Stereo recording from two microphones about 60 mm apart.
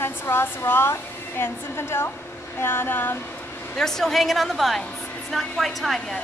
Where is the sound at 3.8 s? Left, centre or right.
Centre.